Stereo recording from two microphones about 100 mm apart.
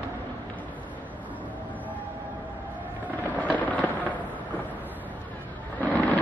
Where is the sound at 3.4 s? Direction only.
15° left (ahead or behind).